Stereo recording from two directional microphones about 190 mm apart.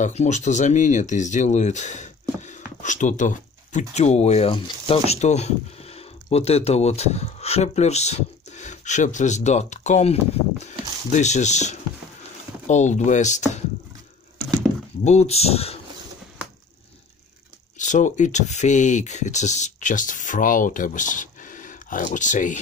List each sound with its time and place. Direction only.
0.0 s speech: 40° left (ahead or behind)
15.0 s speech: 35° left (ahead or behind)
17.7 s speech: 40° left (ahead or behind)